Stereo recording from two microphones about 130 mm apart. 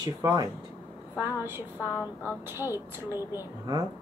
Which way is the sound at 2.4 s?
20° right (ahead or behind).